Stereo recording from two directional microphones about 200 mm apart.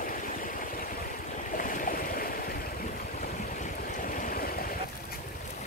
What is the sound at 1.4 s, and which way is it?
Stream, 40° left (ahead or behind).